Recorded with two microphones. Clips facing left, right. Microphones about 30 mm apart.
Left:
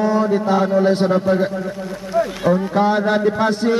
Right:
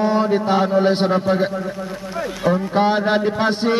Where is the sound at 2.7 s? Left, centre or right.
Right.